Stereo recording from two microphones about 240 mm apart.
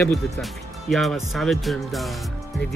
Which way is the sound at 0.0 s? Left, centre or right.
Centre.